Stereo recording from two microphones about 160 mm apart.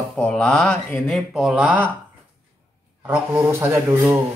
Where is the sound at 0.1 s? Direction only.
5° left (ahead or behind).